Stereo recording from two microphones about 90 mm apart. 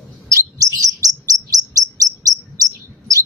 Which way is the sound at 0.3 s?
40° right (ahead or behind).